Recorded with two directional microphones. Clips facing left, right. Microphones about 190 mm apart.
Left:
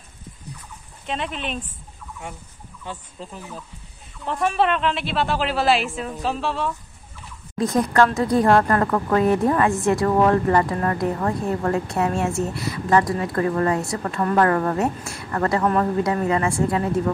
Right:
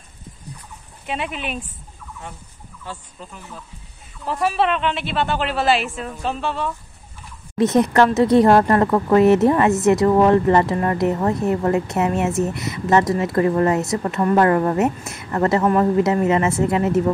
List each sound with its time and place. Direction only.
1.0 s speech: 5° right (ahead or behind)
2.9 s speech: 20° left (ahead or behind)
4.2 s a woman's voice: 5° right (ahead or behind)
7.6 s a woman's voice: 20° right (ahead or behind)